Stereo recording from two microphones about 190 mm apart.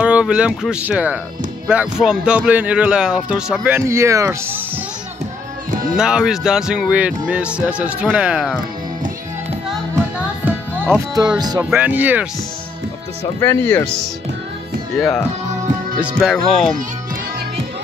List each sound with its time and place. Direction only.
0.0 s speech: 5° right (ahead or behind)
5.7 s music: 45° right (ahead or behind)
5.9 s speech: 5° right (ahead or behind)
10.4 s music: 15° right (ahead or behind)
11.7 s speech: 10° right (ahead or behind)
13.4 s speech: 10° left (ahead or behind)
15.0 s speech: 5° left (ahead or behind)